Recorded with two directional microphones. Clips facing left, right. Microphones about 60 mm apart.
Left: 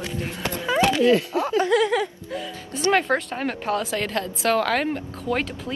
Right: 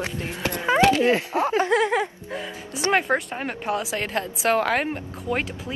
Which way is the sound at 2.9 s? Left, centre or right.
Centre.